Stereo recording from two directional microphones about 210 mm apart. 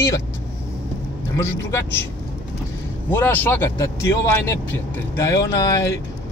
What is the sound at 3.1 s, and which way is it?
Speech, 10° left (ahead or behind).